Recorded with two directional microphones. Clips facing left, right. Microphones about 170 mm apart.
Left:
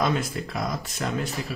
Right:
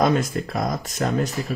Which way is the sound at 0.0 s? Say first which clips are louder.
Right 5 dB; 45° right (ahead or behind).